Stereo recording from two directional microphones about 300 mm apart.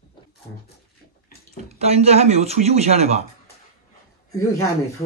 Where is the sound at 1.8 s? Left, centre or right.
Right.